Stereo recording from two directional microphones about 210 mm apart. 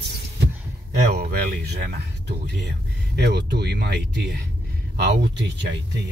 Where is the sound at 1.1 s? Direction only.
50° right (ahead or behind).